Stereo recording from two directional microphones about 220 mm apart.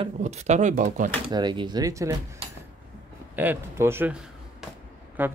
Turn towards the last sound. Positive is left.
turn(degrees=-10)  # may be behind; listen again after turning